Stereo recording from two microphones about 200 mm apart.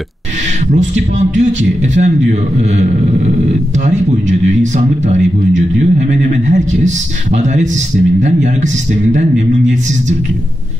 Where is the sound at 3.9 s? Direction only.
35° right (ahead or behind).